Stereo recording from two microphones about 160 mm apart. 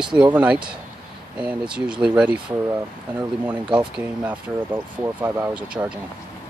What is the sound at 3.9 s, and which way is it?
Speech, 10° right (ahead or behind).